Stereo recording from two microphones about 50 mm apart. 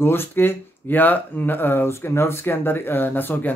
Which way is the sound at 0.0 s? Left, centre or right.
Left.